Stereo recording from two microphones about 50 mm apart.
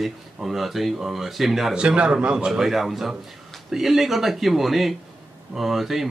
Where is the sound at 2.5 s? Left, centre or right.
Centre.